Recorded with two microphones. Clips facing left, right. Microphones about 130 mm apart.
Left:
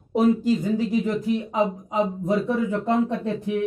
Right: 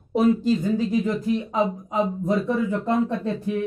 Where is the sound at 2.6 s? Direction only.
20° left (ahead or behind).